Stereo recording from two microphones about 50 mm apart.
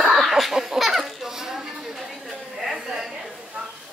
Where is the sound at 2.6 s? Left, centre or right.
Centre.